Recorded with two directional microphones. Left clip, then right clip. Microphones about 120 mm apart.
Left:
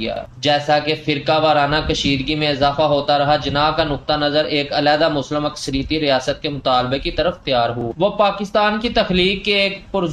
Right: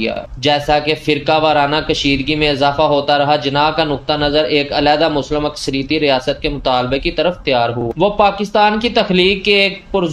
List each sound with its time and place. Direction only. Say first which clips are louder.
0.0 s speech: right 3 dB; 40° right (ahead or behind)